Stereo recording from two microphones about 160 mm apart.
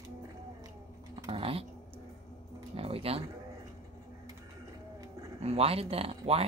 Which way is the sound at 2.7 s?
35° right (ahead or behind).